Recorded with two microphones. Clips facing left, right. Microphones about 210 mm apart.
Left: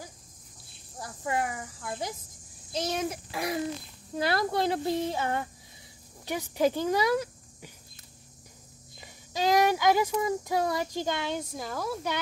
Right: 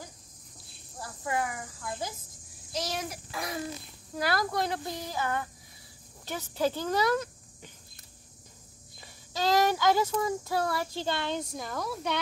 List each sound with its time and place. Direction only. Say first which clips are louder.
1.2 s speech: left 1 dB; 20° left (ahead or behind)
6.2 s speech: left 3 dB; 15° left (ahead or behind)
9.0 s speech: left 2 dB; 15° left (ahead or behind)